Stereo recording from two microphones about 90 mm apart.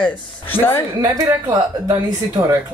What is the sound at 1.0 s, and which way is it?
A woman's voice, 40° right (ahead or behind).